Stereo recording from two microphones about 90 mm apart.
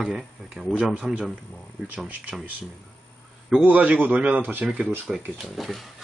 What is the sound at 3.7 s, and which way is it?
Speech, 20° right (ahead or behind).